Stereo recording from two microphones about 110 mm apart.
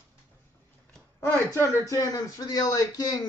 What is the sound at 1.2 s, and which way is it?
Speech, 25° left (ahead or behind).